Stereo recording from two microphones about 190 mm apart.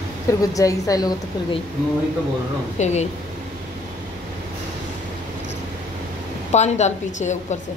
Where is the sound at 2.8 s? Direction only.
35° left (ahead or behind).